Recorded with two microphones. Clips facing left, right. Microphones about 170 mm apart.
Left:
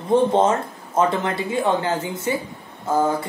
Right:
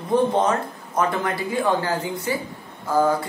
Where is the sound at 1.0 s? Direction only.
25° left (ahead or behind).